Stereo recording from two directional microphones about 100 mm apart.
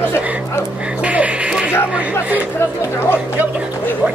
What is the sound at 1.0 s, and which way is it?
Music, 15° right (ahead or behind).